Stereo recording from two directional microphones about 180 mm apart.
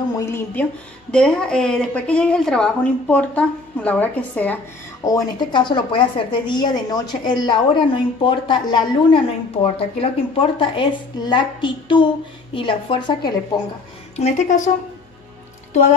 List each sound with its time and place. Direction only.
0.2 s a woman's voice: 10° left (ahead or behind)
5.0 s a woman's voice: 20° left (ahead or behind)
14.1 s speech: 40° left (ahead or behind)